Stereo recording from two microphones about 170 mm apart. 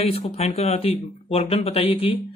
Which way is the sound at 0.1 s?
40° left (ahead or behind).